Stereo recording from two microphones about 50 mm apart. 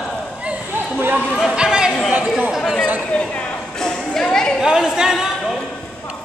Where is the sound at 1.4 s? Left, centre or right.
Centre.